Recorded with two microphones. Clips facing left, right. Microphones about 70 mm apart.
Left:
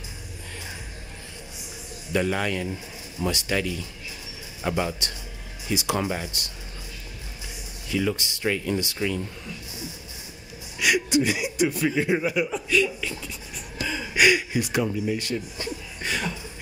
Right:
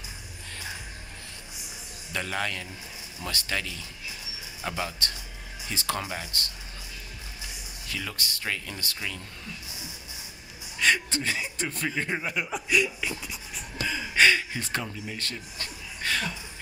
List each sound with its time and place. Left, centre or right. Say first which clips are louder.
2.1 s speech: left 6 dB; centre
7.9 s speech: left 9 dB; centre
10.8 s speech: left 4 dB; centre
12.4 s speech: left 3 dB; centre
14.1 s speech: left 2 dB; centre